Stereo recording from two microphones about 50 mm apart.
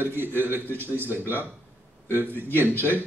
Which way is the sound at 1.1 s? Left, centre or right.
Left.